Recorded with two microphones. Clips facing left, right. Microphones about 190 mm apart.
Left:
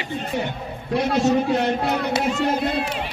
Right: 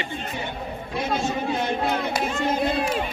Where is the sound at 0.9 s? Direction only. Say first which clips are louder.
Left 7 dB; 70° left (ahead or behind).